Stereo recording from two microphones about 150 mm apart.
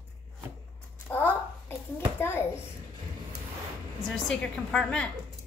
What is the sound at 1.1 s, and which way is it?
Speech, 15° left (ahead or behind).